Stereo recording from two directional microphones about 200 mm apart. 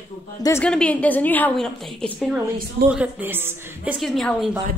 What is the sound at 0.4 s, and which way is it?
A woman's voice, 10° left (ahead or behind).